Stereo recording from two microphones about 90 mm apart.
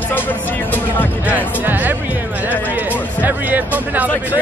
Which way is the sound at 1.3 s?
20° right (ahead or behind).